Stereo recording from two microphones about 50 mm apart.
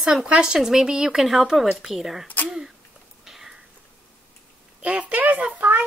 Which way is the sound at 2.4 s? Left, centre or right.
Centre.